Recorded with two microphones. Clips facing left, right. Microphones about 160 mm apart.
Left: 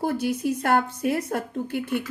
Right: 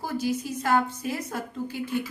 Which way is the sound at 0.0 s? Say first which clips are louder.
Left 4 dB; 60° left (ahead or behind).